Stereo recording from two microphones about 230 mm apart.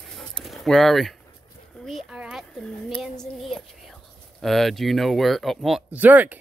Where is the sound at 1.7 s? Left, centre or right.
Centre.